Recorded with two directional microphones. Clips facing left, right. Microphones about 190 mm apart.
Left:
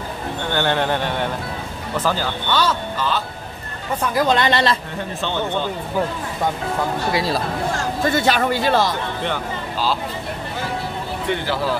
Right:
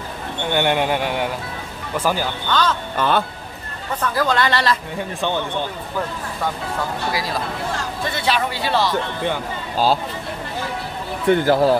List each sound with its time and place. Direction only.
0.5 s a man's voice: 15° right (ahead or behind)
2.5 s speech: 10° left (ahead or behind)
3.0 s a man's voice: 55° right (ahead or behind)
4.0 s speech: 15° left (ahead or behind)
7.1 s speech: 25° left (ahead or behind)
7.7 s speech: 45° left (ahead or behind)
11.2 s a man's voice: 50° right (ahead or behind)